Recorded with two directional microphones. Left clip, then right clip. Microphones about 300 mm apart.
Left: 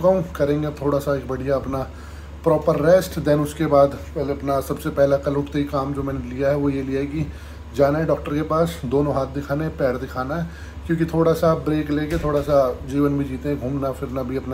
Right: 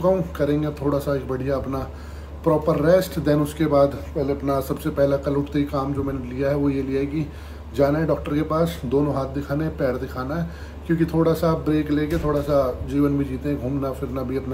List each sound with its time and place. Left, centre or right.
0.0 s speech: centre